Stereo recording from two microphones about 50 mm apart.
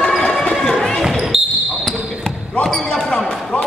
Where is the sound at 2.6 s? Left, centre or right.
Centre.